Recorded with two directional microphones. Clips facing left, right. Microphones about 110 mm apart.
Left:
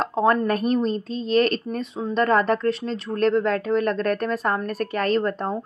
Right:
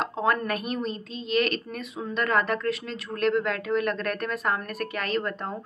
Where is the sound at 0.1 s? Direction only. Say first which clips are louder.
Left 7 dB; 35° left (ahead or behind).